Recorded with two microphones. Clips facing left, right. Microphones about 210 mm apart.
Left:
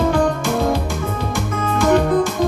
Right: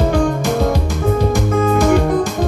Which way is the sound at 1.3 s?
40° right (ahead or behind).